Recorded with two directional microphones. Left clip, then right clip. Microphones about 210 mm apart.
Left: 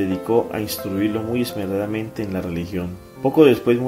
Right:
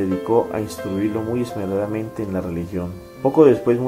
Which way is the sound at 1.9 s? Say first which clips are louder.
Even; 40° left (ahead or behind).